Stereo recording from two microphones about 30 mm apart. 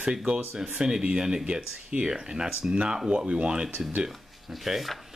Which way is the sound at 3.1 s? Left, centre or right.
Right.